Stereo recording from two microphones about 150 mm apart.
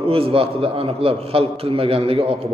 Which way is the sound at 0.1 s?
40° right (ahead or behind).